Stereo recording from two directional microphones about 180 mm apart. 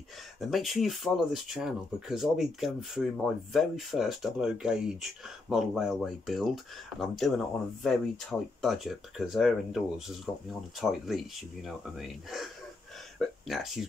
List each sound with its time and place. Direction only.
0.4 s speech: centre (ahead or behind)